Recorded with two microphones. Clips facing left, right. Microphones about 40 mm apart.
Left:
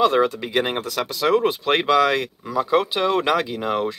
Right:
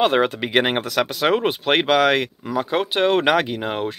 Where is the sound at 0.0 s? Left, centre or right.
Right.